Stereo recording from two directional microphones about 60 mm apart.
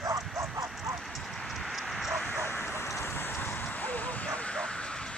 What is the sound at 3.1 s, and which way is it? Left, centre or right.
Bow-wow, left.